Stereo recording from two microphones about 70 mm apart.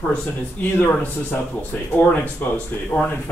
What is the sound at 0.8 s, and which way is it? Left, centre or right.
Speech, left.